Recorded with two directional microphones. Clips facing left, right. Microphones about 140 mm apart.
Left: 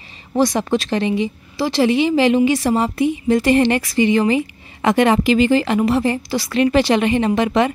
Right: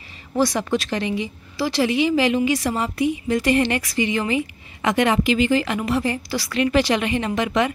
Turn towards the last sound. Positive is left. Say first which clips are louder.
# left 5 dB
turn(degrees=30)  # may be behind; listen again after turning